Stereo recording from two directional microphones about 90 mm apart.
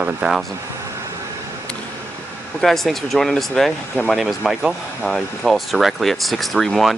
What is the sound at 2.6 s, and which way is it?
Speech, centre (ahead or behind).